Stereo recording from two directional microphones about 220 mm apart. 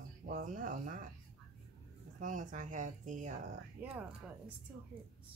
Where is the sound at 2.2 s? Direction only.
35° right (ahead or behind).